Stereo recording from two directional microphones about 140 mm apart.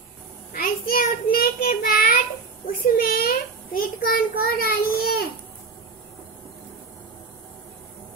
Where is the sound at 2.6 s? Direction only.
90° left.